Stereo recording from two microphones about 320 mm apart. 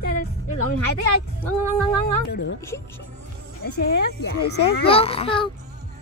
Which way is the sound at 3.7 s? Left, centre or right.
Left.